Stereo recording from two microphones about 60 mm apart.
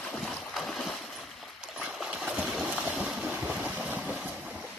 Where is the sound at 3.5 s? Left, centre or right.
Right.